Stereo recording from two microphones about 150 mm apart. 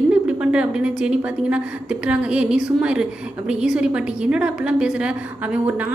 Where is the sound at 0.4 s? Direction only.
5° right (ahead or behind).